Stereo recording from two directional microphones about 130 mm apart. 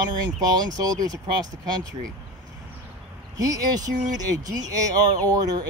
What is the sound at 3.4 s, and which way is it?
Speech, 30° right (ahead or behind).